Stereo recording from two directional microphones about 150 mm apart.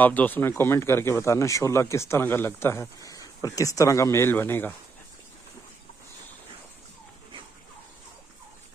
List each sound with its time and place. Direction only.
0.0 s speech: 10° left (ahead or behind)